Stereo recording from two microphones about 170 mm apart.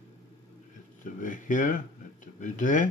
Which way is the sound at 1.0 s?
50° left (ahead or behind).